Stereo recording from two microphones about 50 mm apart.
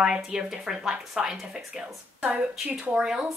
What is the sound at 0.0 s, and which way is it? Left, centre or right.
A woman's voice, centre.